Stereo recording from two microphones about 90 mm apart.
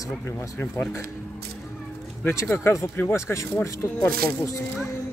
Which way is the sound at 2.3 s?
30° left (ahead or behind).